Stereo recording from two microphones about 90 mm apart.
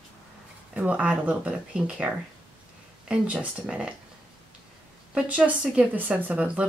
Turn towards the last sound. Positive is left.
turn(degrees=-15)  # may be behind; listen again after turning